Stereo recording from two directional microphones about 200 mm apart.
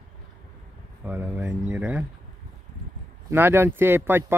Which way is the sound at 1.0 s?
10° right (ahead or behind).